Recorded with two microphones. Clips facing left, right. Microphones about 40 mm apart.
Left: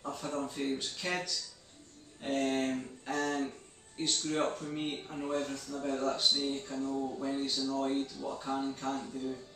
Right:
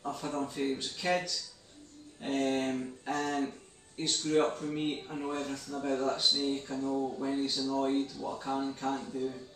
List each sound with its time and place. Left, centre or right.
0.1 s speech: centre
6.9 s a sound: centre
7.2 s speech: centre